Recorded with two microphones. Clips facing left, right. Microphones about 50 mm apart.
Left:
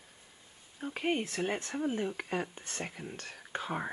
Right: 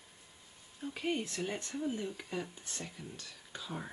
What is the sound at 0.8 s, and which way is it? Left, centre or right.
Speech, left.